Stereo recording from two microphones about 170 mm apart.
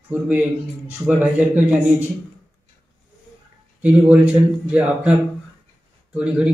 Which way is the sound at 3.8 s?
10° right (ahead or behind).